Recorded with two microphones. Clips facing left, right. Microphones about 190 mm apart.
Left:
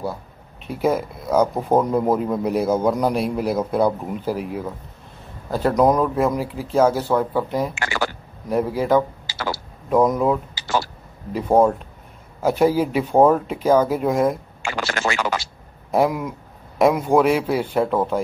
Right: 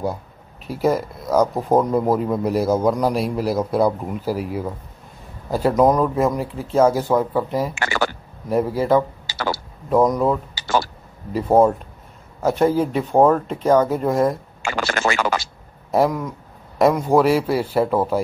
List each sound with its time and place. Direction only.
0.7 s speech: centre (ahead or behind)
6.9 s speech: 10° right (ahead or behind)
14.6 s speech: 50° right (ahead or behind)
15.9 s speech: 5° left (ahead or behind)